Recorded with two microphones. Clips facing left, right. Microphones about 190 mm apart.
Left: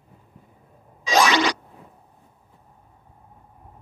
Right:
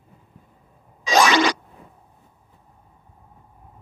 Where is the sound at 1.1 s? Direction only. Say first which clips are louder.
Right 2 dB; 50° right (ahead or behind).